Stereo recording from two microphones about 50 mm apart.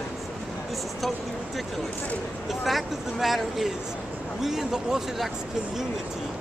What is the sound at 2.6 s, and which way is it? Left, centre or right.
Speech, centre.